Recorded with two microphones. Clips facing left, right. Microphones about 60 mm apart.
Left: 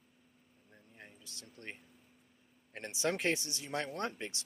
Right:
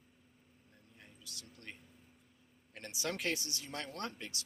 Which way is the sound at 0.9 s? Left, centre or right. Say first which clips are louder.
Left 1 dB; left.